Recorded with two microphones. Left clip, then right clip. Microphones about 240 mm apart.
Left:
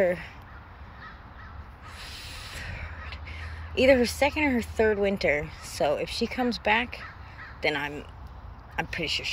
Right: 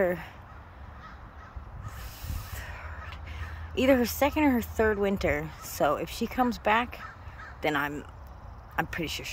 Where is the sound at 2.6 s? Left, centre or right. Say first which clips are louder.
Left 2 dB; centre.